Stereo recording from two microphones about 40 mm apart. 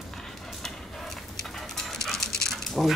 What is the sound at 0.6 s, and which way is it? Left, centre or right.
Dog, centre.